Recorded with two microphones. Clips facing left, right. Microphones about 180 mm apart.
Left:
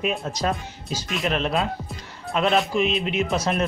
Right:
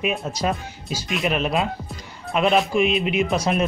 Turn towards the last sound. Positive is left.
turn(degrees=-10)  # may be behind; listen again after turning